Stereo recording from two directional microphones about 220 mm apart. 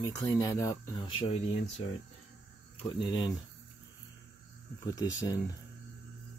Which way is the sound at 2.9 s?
20° left (ahead or behind).